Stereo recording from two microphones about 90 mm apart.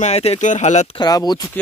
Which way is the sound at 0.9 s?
45° left (ahead or behind).